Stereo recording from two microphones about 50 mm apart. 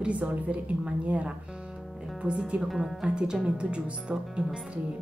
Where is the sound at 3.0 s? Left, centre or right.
Centre.